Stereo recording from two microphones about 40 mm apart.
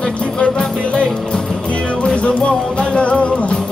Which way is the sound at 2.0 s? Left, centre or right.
Left.